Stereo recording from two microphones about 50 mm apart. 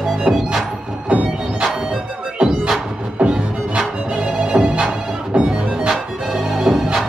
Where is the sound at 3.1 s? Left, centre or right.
Right.